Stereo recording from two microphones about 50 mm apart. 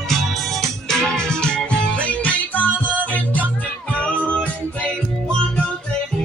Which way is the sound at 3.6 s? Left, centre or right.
Left.